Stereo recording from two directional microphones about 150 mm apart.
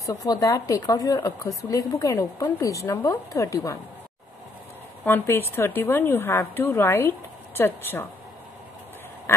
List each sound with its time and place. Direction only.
0.0 s a woman's voice: 20° left (ahead or behind)
5.0 s a woman's voice: 15° left (ahead or behind)